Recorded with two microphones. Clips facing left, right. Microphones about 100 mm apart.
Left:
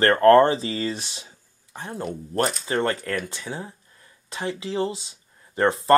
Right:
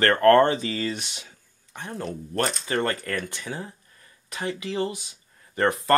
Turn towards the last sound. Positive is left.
turn(degrees=25)  # may be behind; listen again after turning